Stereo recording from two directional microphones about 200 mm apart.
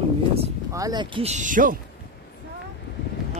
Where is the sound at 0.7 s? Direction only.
20° right (ahead or behind); by 1.7 s 40° right (ahead or behind).